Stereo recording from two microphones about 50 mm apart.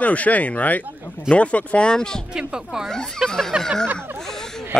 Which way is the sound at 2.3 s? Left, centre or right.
Centre.